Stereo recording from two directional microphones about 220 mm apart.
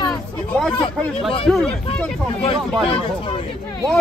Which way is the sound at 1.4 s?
Centre (ahead or behind).